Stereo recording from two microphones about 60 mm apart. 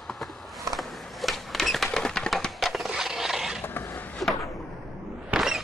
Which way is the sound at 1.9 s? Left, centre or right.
Centre.